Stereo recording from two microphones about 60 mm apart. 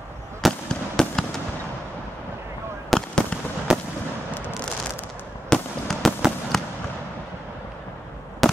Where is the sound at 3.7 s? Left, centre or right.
Centre.